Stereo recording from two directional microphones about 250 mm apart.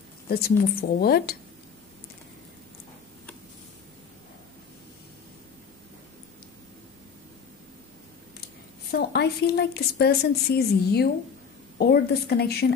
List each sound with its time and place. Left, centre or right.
0.3 s a woman's voice: left
8.9 s a woman's voice: left